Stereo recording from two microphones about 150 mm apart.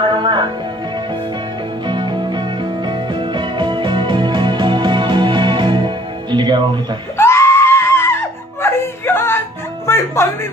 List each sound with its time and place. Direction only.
0.0 s music: 30° right (ahead or behind)
1.9 s music: 30° right (ahead or behind)
6.3 s speech: 30° right (ahead or behind)
7.2 s screaming: 15° left (ahead or behind)
9.8 s speech: 15° left (ahead or behind)